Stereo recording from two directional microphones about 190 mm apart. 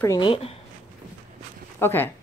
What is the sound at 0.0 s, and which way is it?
Speech, 20° left (ahead or behind).